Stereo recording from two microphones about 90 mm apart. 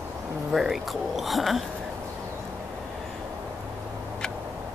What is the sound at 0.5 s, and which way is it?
Speech, 5° right (ahead or behind).